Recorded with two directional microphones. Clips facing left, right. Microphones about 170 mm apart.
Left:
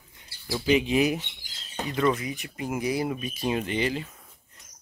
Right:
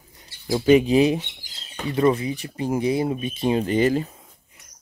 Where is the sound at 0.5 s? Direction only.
45° right (ahead or behind).